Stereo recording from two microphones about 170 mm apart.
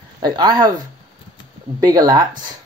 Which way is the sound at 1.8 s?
20° right (ahead or behind).